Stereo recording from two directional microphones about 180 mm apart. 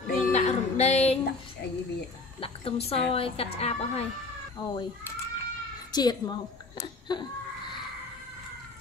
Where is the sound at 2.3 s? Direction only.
30° left (ahead or behind).